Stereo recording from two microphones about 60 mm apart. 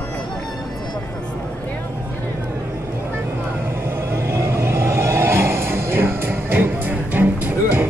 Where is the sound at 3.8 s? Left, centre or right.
Right.